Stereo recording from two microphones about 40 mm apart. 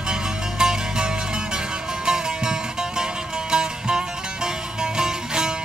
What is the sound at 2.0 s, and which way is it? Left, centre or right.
Music, centre.